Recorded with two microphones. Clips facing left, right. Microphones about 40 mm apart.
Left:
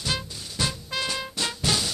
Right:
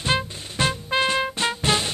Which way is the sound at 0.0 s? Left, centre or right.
Right.